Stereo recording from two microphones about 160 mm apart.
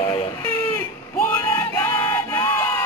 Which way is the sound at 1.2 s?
15° left (ahead or behind).